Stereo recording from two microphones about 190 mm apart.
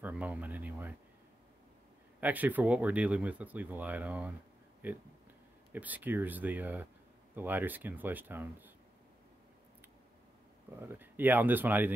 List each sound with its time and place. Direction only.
0.0 s speech: 5° right (ahead or behind)
2.1 s speech: 10° right (ahead or behind)
10.8 s speech: 10° right (ahead or behind)